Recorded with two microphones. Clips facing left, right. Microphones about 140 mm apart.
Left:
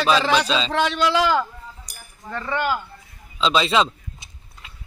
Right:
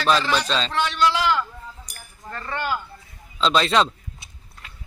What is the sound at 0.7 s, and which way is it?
Speech, 90° left.